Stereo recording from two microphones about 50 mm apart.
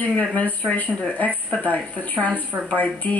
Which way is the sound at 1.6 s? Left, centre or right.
Left.